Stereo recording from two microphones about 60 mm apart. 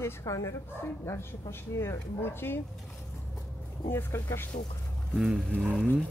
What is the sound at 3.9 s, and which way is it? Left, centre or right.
Speech, left.